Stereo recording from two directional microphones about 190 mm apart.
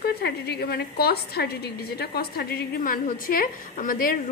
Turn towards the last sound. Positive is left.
turn(degrees=45)  # may be behind; listen again after turning